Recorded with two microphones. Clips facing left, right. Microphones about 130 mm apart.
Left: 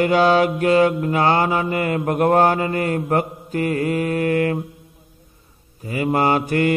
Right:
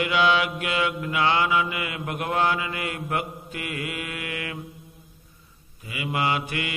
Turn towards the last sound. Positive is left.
turn(degrees=45)  # may be behind; listen again after turning